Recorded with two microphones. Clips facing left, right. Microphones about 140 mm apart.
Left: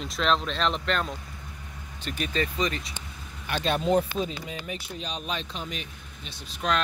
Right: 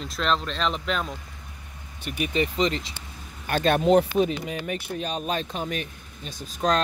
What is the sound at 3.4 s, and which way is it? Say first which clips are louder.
Speech: right 5 dB; 50° right (ahead or behind).